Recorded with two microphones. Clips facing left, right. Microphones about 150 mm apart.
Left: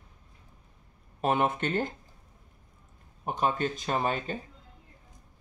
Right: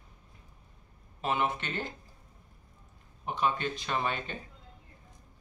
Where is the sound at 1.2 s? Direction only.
50° left (ahead or behind).